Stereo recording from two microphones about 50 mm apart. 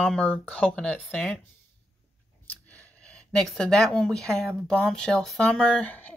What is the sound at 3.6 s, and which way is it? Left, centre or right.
Speech, centre.